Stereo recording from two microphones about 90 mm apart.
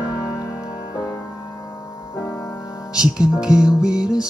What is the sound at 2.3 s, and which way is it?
Music, 30° left (ahead or behind).